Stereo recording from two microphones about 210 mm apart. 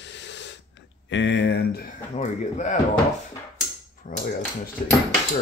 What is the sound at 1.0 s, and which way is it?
Speech, 60° left (ahead or behind).